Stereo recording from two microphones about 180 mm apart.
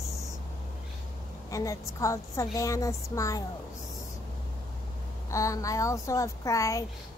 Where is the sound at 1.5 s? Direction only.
15° left (ahead or behind).